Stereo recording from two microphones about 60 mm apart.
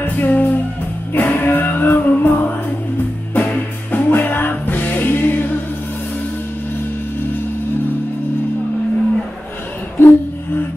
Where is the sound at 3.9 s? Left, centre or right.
Left.